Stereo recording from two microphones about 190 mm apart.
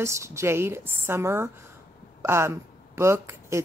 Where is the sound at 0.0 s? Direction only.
15° right (ahead or behind).